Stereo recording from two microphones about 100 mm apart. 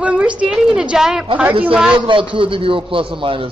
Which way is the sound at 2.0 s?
55° right (ahead or behind).